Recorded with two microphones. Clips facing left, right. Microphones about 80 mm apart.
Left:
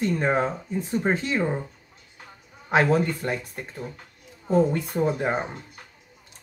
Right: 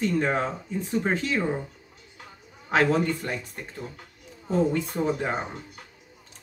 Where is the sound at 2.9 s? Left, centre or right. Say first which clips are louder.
Left 2 dB; left.